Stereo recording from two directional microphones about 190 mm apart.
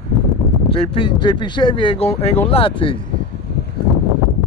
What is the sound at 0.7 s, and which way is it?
Speech, 30° left (ahead or behind).